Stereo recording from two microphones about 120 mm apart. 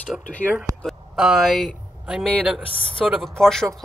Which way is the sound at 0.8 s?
Centre (ahead or behind).